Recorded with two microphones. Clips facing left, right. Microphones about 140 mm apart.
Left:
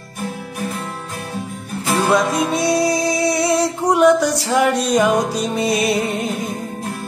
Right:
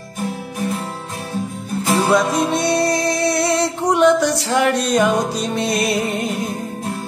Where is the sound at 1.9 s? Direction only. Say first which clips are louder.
Even; centre (ahead or behind).